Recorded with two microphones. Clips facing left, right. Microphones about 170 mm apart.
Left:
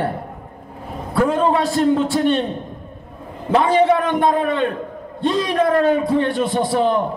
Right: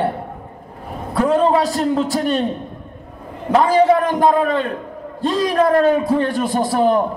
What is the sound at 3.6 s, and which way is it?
A man's voice, 40° right (ahead or behind).